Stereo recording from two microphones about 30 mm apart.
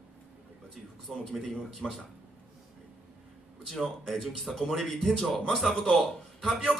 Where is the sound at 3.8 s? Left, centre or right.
Centre.